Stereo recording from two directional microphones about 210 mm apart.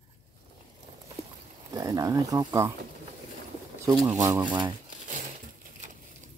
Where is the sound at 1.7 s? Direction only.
15° right (ahead or behind).